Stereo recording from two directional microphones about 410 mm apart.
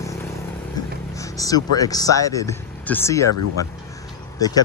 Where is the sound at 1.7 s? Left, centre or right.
Centre.